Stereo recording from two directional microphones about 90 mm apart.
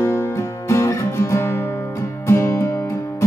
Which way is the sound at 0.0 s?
30° left (ahead or behind).